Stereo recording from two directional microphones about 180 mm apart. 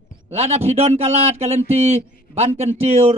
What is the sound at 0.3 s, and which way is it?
A man's voice, 35° right (ahead or behind).